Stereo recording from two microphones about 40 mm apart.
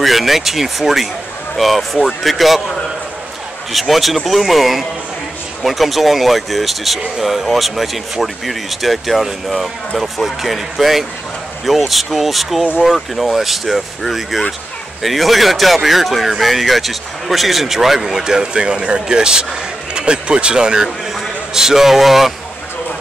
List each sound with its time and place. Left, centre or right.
0.0 s speech: centre
3.7 s speech: centre
21.1 s a man's voice: centre